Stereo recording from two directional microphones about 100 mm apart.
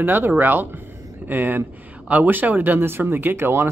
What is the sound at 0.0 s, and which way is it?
Speech, 20° right (ahead or behind).